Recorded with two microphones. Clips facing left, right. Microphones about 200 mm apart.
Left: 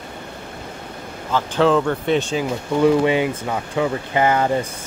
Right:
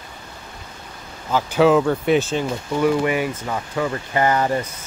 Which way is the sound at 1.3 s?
10° right (ahead or behind).